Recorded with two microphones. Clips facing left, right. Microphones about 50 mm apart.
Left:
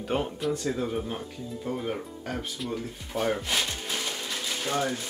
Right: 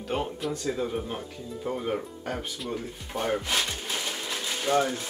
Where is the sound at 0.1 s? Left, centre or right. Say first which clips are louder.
Left 2 dB; centre.